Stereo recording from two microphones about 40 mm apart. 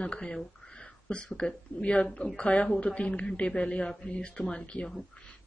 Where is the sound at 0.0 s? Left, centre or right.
Left.